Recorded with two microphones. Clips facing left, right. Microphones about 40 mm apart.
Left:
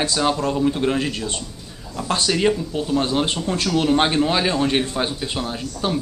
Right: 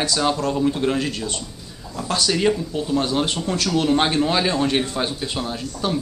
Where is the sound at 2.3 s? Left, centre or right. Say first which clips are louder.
Even; centre.